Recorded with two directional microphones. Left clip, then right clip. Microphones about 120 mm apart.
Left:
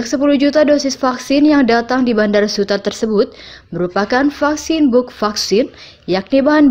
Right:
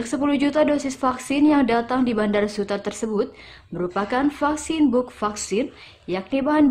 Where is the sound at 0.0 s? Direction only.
20° left (ahead or behind).